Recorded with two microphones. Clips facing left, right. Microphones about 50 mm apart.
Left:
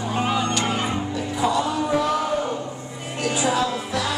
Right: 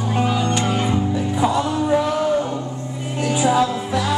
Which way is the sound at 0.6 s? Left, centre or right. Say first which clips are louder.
Right 3 dB; left.